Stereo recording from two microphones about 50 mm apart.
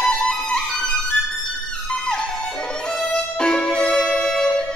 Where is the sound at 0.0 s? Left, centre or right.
Centre.